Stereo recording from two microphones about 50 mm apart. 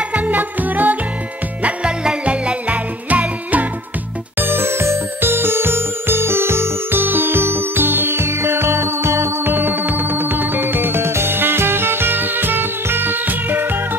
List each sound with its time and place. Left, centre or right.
0.1 s music: right
1.6 s music: right
4.4 s music: right
7.0 s music: right
9.4 s music: right